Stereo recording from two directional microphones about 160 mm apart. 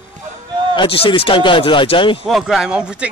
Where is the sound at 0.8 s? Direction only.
30° left (ahead or behind).